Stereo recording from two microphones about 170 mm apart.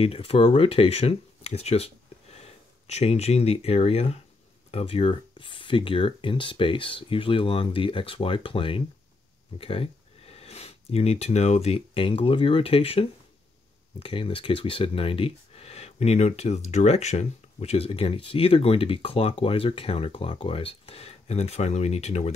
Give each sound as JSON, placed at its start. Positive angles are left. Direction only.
{"t": 0.0, "sound": "speech", "side_deg": 35}